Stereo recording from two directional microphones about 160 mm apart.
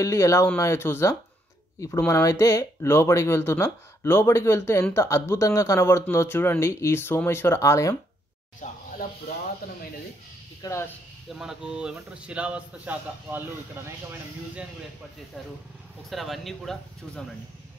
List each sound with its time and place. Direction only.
0.0 s a man's voice: 20° left (ahead or behind)
8.6 s speech: 50° left (ahead or behind)
10.6 s speech: 20° left (ahead or behind)
11.3 s a man's voice: 5° right (ahead or behind)
16.1 s speech: centre (ahead or behind)